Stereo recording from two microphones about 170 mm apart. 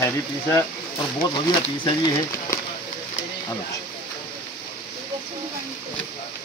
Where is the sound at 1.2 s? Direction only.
30° left (ahead or behind).